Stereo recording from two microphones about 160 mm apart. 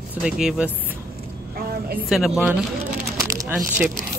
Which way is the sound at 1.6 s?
70° right (ahead or behind).